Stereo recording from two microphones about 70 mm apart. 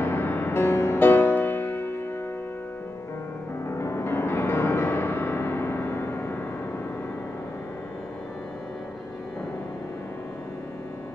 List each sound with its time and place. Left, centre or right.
0.0 s music: left
3.6 s music: left